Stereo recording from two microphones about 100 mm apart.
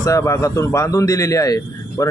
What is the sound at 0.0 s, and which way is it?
A man's voice, 30° left (ahead or behind).